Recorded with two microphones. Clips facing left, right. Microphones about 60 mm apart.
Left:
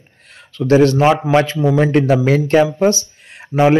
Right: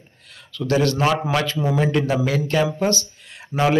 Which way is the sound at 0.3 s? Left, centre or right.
Left.